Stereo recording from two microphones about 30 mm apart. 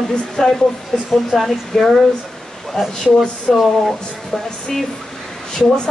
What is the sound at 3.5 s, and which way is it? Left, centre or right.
Speech, centre.